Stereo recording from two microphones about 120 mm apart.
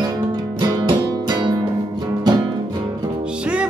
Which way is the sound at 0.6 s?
40° right (ahead or behind).